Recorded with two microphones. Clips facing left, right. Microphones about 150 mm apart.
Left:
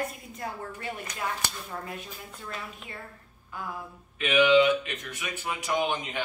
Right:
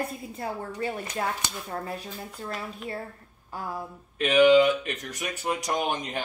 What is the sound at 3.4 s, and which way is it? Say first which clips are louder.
Speech: right 3 dB; 35° right (ahead or behind).